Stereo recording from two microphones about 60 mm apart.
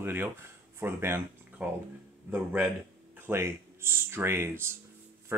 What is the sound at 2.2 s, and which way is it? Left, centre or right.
Speech, right.